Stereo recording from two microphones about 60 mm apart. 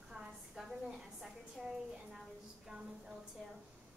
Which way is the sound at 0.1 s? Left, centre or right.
Centre.